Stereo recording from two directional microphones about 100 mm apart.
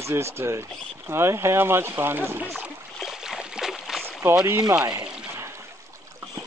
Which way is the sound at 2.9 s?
5° right (ahead or behind).